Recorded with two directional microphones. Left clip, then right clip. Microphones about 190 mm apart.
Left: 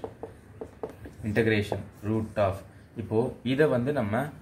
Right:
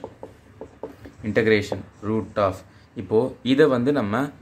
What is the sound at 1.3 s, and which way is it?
Speech, 45° right (ahead or behind).